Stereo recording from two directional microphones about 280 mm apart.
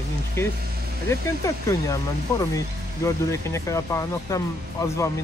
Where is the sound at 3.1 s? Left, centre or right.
Centre.